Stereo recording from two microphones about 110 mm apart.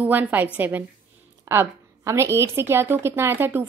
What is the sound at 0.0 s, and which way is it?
A woman's voice, 15° right (ahead or behind).